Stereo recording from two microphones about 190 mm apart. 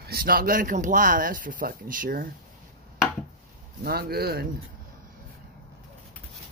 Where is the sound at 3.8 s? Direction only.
55° right (ahead or behind).